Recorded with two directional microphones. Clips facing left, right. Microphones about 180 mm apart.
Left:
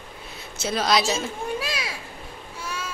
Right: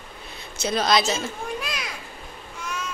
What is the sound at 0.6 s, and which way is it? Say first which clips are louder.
Speech: right 1 dB; 5° left (ahead or behind).